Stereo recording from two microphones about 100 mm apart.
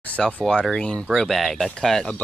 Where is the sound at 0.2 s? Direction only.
10° left (ahead or behind).